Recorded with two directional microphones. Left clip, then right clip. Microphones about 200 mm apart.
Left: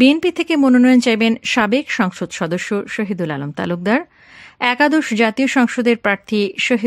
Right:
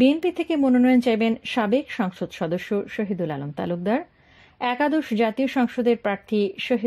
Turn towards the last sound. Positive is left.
turn(degrees=20)  # may be behind; listen again after turning